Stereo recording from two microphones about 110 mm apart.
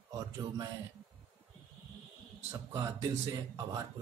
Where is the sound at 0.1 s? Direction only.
35° right (ahead or behind).